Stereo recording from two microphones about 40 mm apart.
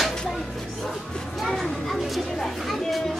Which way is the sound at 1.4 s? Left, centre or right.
Centre.